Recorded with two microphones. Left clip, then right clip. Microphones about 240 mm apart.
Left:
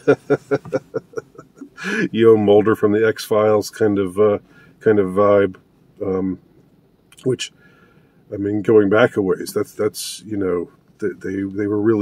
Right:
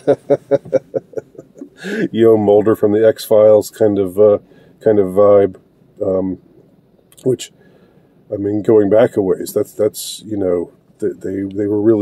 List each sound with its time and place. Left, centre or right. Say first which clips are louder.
0.0 s speech: right 3 dB; centre